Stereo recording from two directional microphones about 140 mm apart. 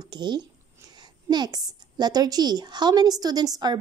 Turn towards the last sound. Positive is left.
turn(degrees=-30)  # may be behind; listen again after turning